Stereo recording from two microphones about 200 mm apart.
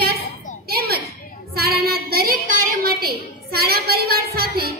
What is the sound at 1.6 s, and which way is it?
Child singing, 50° right (ahead or behind).